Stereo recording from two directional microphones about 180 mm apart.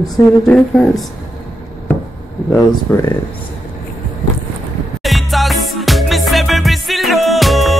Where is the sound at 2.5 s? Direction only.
15° left (ahead or behind).